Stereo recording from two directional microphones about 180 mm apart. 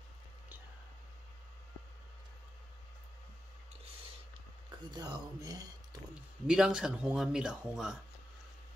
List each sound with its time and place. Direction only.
4.6 s speech: 25° right (ahead or behind)
6.4 s speech: 5° right (ahead or behind)